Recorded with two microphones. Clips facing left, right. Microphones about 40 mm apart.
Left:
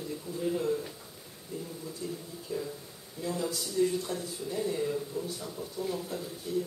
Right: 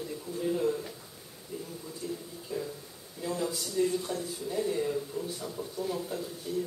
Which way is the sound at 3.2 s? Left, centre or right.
Centre.